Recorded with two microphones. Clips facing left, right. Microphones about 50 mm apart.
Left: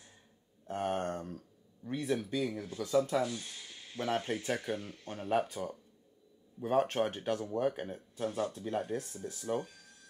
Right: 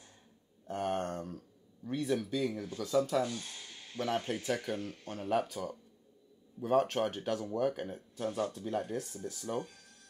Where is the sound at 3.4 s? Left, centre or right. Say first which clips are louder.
Right 1 dB; centre.